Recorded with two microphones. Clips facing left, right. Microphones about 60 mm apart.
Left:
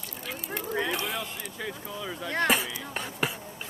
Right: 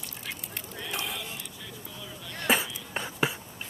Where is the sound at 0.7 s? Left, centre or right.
Left.